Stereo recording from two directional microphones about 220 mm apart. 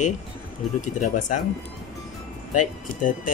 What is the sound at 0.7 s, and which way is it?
Speech, 35° left (ahead or behind).